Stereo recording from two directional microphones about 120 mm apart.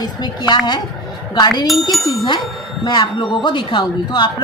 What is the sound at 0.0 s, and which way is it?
Speech, 35° left (ahead or behind).